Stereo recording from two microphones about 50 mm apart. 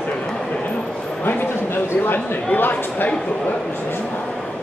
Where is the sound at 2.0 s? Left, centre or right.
Left.